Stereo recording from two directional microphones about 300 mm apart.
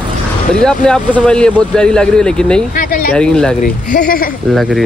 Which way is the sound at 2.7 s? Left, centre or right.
Left.